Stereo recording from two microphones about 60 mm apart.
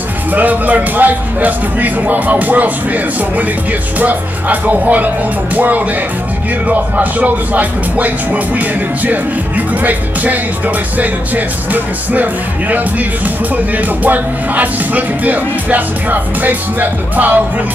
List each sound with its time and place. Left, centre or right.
0.3 s music: right
4.0 s music: right
6.7 s music: right
11.0 s music: right
14.0 s music: right